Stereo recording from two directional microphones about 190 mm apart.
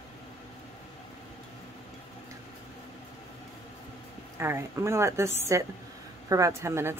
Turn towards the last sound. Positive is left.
turn(degrees=-15)  # may be behind; listen again after turning